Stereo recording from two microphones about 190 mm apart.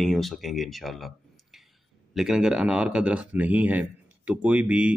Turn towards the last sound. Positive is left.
turn(degrees=-5)  # may be behind; listen again after turning